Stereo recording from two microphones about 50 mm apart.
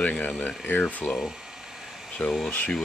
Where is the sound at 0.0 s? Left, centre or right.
Left.